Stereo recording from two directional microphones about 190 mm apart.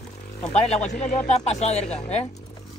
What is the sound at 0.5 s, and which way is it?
Speech, 35° left (ahead or behind).